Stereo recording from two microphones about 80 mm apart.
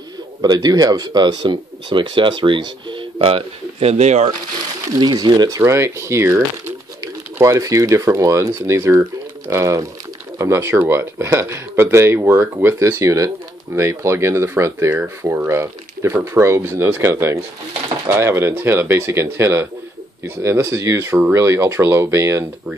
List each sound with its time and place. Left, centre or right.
0.4 s speech: right
4.9 s speech: right
5.6 s speech: right